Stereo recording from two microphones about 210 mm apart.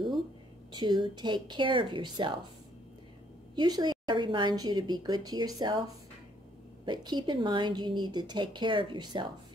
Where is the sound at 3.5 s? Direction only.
20° right (ahead or behind).